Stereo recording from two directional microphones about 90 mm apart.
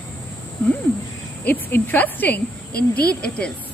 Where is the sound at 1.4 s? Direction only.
20° left (ahead or behind).